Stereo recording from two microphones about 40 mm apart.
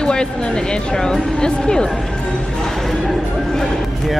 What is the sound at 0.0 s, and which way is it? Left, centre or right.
A woman's voice, left.